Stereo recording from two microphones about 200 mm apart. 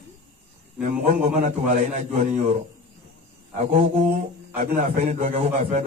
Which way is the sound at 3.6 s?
35° right (ahead or behind).